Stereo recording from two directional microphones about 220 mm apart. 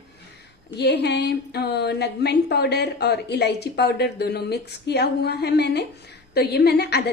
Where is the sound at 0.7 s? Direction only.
50° left (ahead or behind).